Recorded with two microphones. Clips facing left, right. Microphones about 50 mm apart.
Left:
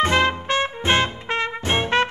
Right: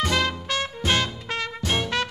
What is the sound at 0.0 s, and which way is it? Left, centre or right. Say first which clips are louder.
Music: left 5 dB; left.